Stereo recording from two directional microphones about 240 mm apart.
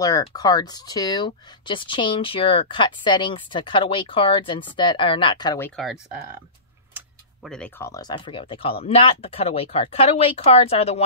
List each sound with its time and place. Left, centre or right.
0.0 s speech: centre
7.4 s speech: centre; by 11.0 s left